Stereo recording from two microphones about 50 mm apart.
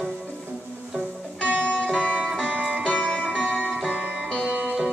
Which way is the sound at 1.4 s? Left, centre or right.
Left.